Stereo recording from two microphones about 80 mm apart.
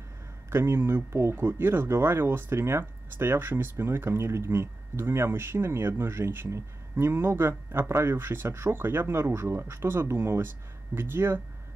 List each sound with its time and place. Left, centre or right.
0.5 s speech: right